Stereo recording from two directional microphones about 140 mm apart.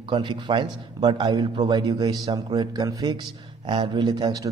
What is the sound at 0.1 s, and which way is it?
A man's voice, 35° right (ahead or behind).